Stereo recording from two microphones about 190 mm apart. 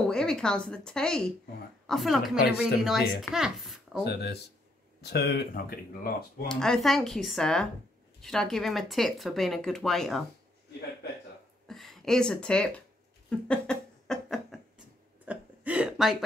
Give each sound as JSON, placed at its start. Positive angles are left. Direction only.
{"t": 0.0, "sound": "speech", "side_deg": 5}
{"t": 4.0, "sound": "speech", "side_deg": 60}
{"t": 6.5, "sound": "speech", "side_deg": 5}
{"t": 11.6, "sound": "speech", "side_deg": 0}
{"t": 13.3, "sound": "a sound", "side_deg": 5}